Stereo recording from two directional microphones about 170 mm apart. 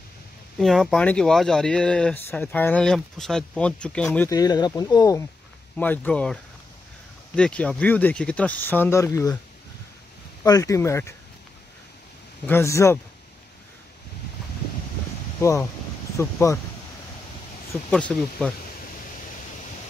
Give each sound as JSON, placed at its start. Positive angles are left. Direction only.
{"t": 0.6, "sound": "speech", "side_deg": 0}
{"t": 4.3, "sound": "speech", "side_deg": 20}
{"t": 5.8, "sound": "speech", "side_deg": 10}
{"t": 10.4, "sound": "speech", "side_deg": 20}
{"t": 12.4, "sound": "speech", "side_deg": 15}
{"t": 15.4, "sound": "speech", "side_deg": 15}
{"t": 17.8, "sound": "speech", "side_deg": 5}